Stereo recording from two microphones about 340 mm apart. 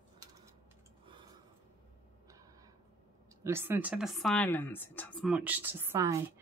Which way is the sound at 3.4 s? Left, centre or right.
Centre.